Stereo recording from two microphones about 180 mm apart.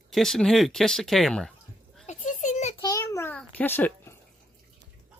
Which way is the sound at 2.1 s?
45° left (ahead or behind).